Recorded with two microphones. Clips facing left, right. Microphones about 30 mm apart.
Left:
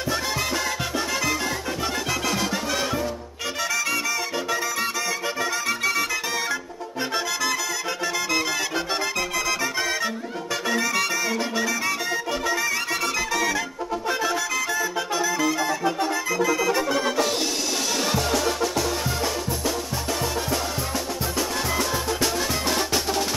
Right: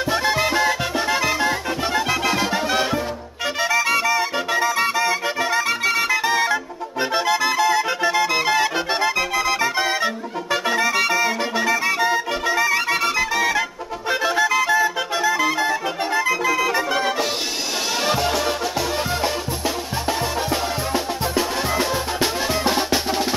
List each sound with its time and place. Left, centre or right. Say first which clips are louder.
0.0 s music: right 6 dB; right